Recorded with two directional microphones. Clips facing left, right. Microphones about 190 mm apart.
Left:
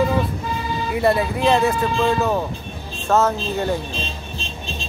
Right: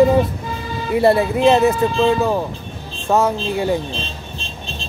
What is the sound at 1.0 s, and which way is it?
Speech, 30° right (ahead or behind).